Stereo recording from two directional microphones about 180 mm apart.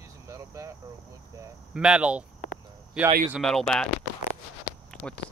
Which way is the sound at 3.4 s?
5° left (ahead or behind).